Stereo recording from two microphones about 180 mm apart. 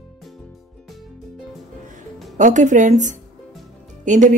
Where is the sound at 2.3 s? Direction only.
45° right (ahead or behind).